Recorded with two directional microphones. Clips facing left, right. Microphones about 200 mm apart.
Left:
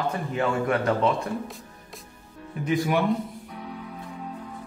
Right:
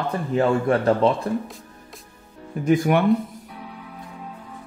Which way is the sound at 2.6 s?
50° right (ahead or behind).